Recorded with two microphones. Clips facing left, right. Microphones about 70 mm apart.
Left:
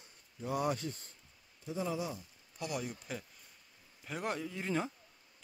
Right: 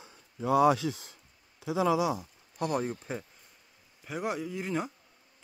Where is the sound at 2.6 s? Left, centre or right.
Right.